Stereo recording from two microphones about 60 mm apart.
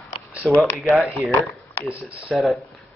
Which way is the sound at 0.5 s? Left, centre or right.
Left.